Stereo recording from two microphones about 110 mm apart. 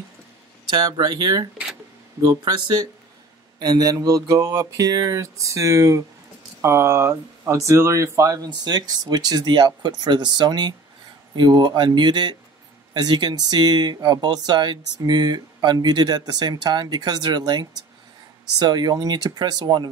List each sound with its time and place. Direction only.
0.7 s speech: 40° right (ahead or behind)
8.5 s speech: 40° right (ahead or behind)